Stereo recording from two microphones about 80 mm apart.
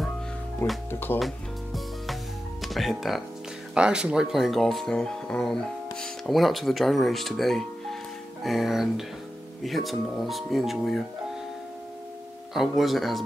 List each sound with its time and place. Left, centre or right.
0.6 s speech: left
1.2 s music: centre
2.6 s speech: centre
12.5 s speech: centre